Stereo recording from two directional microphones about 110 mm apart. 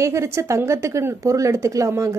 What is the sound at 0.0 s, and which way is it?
Speech, 25° right (ahead or behind).